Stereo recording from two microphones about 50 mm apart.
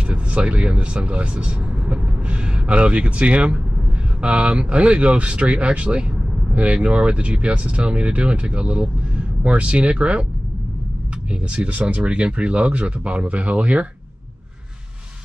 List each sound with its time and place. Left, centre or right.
0.1 s speech: right
11.2 s speech: right